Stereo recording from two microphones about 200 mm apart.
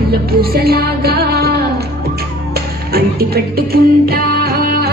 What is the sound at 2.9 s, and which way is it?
Music, 50° right (ahead or behind).